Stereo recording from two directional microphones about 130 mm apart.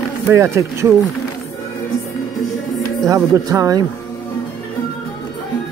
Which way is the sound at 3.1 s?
25° right (ahead or behind).